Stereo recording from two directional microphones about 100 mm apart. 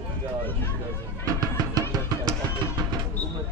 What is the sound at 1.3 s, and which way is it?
Music, 40° right (ahead or behind).